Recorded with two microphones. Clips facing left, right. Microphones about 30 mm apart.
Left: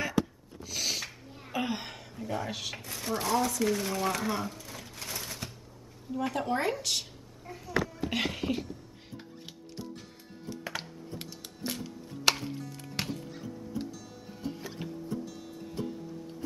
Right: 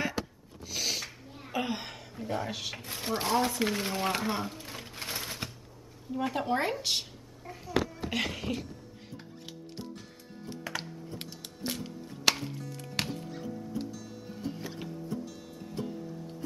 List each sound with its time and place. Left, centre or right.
0.7 s a sound: centre
2.2 s speech: centre
2.8 s speech: right
4.6 s a sound: right
6.3 s speech: centre
6.8 s a sound: centre
8.1 s speech: centre
10.7 s music: centre
11.8 s music: centre